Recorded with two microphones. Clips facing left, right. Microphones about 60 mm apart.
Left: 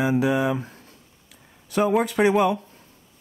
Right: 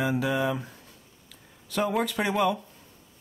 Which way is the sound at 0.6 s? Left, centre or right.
Left.